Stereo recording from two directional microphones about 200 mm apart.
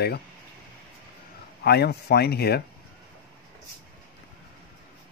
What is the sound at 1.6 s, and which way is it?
Speech, 55° left (ahead or behind).